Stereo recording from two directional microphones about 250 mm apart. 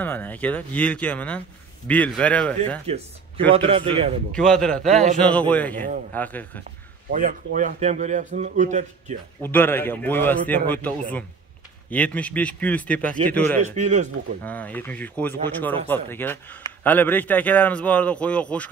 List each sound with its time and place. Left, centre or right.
0.0 s speech: centre
3.5 s a man's voice: right
4.3 s a man's voice: centre
7.1 s a man's voice: right
9.4 s a man's voice: centre
13.7 s a man's voice: right
14.4 s a man's voice: centre